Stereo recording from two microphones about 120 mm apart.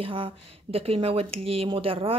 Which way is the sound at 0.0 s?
50° right (ahead or behind).